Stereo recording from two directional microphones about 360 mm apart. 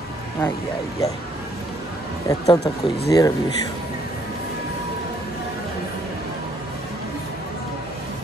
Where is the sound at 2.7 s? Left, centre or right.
Centre.